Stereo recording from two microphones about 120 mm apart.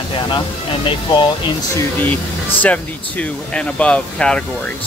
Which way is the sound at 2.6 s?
10° left (ahead or behind).